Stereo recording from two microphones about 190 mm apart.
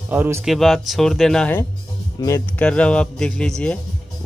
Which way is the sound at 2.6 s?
5° left (ahead or behind).